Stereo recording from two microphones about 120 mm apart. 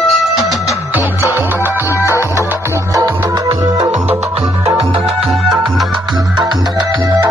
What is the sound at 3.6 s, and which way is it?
Music, 35° right (ahead or behind).